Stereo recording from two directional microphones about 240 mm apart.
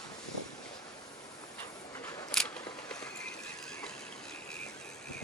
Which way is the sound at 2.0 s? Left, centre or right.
Centre.